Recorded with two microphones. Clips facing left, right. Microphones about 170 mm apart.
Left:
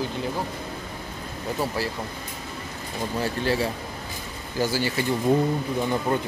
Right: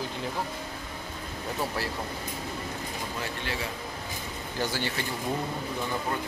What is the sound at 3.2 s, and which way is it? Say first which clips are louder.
Speech: left 11 dB; 35° left (ahead or behind).